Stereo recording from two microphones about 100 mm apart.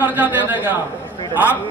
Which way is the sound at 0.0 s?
20° right (ahead or behind).